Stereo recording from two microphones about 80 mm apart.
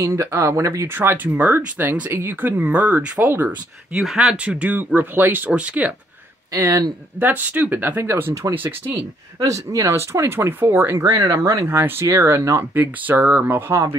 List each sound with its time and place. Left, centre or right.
0.0 s speech: right
3.4 s speech: centre
6.5 s speech: right
7.2 s speech: right
9.4 s speech: right
11.1 s speech: right